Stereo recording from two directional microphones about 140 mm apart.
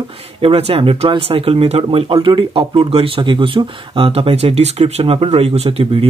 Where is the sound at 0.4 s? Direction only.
45° right (ahead or behind).